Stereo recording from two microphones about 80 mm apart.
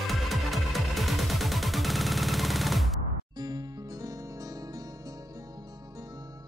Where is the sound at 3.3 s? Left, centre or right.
Right.